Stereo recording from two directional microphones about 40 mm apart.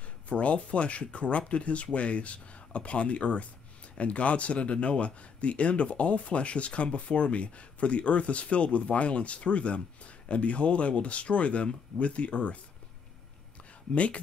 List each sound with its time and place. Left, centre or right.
0.3 s speech: left
13.9 s speech: left